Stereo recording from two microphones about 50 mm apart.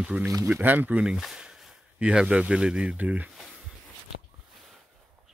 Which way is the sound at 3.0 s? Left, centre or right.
Right.